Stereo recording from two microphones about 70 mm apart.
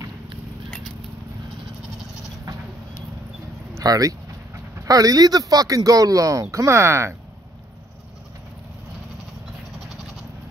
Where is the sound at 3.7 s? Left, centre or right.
Right.